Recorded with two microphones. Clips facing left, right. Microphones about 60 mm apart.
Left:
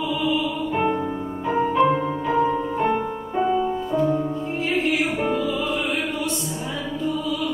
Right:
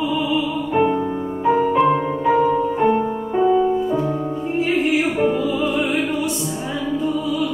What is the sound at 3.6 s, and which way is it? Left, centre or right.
Music, centre.